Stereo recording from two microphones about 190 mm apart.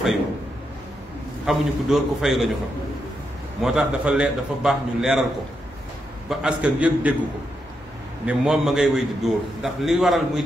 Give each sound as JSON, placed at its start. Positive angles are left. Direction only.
{"t": 1.4, "sound": "a man's voice", "side_deg": 0}
{"t": 3.6, "sound": "a man's voice", "side_deg": -5}
{"t": 6.2, "sound": "a man's voice", "side_deg": -5}
{"t": 8.3, "sound": "a man's voice", "side_deg": -5}